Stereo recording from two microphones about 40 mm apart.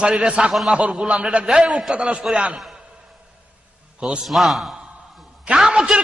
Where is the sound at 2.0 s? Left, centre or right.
Right.